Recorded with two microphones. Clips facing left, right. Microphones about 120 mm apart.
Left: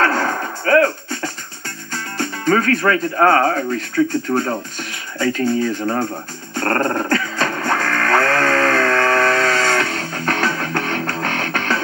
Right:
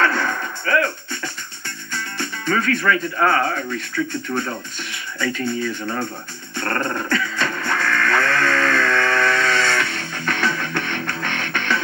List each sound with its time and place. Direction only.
0.0 s music: 40° left (ahead or behind)
2.1 s speech: 40° left (ahead or behind)
6.5 s dog: 40° left (ahead or behind)